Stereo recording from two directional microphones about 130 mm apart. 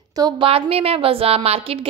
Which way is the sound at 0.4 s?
45° right (ahead or behind).